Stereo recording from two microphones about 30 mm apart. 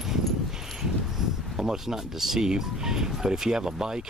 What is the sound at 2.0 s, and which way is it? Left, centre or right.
Speech, centre.